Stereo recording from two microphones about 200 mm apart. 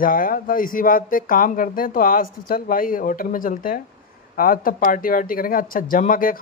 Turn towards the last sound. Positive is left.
turn(degrees=45)  # may be behind; listen again after turning